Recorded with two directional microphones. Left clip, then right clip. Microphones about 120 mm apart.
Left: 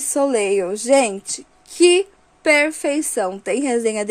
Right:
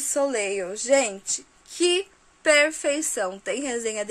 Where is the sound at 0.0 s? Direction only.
35° left (ahead or behind).